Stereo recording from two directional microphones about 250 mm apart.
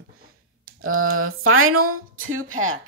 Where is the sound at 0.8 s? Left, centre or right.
Right.